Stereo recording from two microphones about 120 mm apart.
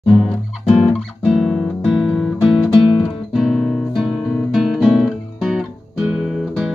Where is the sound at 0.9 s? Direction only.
5° left (ahead or behind).